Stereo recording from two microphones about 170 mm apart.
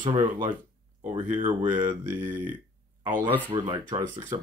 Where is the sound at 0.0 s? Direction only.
25° right (ahead or behind).